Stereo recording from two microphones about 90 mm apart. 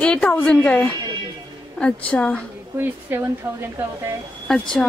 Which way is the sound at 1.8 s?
15° left (ahead or behind).